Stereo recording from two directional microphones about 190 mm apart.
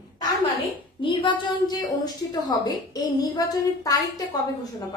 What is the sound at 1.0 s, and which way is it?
A woman's voice, 25° left (ahead or behind).